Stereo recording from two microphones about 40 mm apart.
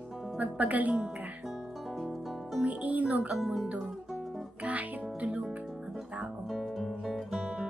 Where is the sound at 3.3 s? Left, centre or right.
Centre.